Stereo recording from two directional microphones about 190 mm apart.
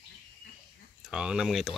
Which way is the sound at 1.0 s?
5° right (ahead or behind).